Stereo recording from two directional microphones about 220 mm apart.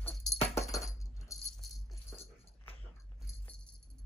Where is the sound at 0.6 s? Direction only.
15° left (ahead or behind).